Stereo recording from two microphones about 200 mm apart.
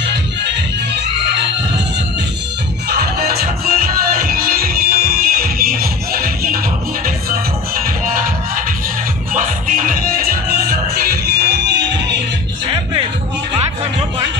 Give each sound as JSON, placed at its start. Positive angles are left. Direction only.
{"t": 2.9, "sound": "music", "side_deg": -50}
{"t": 7.8, "sound": "music", "side_deg": -45}
{"t": 9.3, "sound": "music", "side_deg": -40}